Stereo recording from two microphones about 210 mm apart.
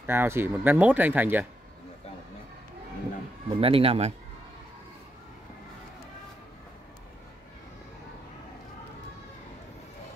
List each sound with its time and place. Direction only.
0.0 s speech: 10° right (ahead or behind)
3.4 s a man's voice: 25° right (ahead or behind)